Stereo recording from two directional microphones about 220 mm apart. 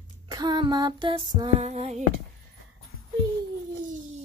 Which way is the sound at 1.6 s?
30° right (ahead or behind).